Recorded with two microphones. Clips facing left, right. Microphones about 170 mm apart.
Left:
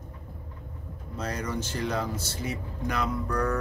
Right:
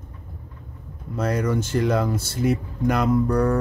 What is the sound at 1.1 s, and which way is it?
Speech, 55° right (ahead or behind).